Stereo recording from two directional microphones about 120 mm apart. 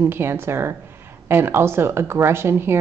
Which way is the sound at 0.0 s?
20° right (ahead or behind).